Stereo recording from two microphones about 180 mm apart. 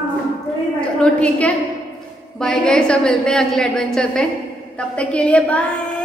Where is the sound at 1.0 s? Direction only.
5° left (ahead or behind).